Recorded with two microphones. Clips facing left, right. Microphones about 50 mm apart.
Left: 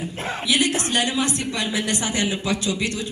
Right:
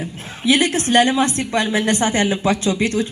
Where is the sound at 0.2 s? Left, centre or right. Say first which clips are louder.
Left 3 dB; left.